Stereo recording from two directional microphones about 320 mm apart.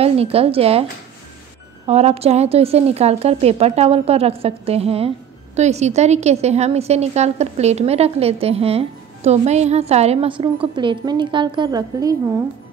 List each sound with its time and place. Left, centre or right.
0.0 s a woman's voice: centre
1.9 s a woman's voice: centre